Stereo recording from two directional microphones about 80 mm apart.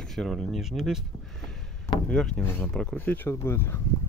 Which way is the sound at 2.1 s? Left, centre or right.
Centre.